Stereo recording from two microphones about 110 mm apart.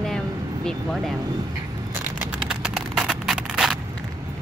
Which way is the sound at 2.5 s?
5° right (ahead or behind).